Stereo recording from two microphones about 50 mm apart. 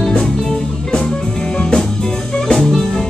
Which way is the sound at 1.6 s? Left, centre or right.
Centre.